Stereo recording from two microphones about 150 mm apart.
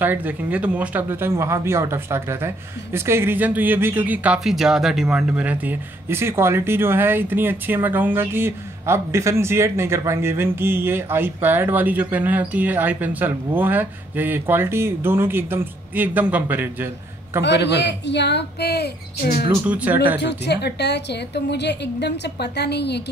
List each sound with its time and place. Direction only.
0.0 s speech: 10° right (ahead or behind)
18.6 s speech: 90° left
19.6 s speech: 10° right (ahead or behind)
20.6 s speech: 90° left
22.4 s speech: 90° left